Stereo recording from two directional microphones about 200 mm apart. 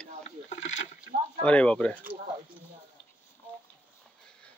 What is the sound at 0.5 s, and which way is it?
Rowboat, 35° left (ahead or behind).